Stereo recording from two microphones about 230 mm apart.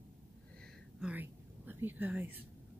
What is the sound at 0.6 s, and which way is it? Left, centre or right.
Whispering, centre.